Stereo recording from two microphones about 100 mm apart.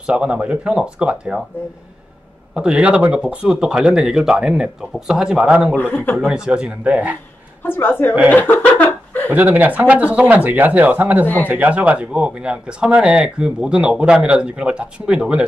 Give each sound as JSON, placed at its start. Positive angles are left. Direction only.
{"t": 0.0, "sound": "speech", "side_deg": -10}
{"t": 2.5, "sound": "speech", "side_deg": -10}
{"t": 5.8, "sound": "a woman's voice", "side_deg": 20}
{"t": 6.1, "sound": "speech", "side_deg": -10}
{"t": 7.6, "sound": "a woman's voice", "side_deg": 20}
{"t": 9.3, "sound": "speech", "side_deg": -15}